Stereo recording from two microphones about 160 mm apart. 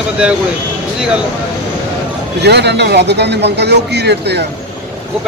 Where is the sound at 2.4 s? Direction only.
90° right.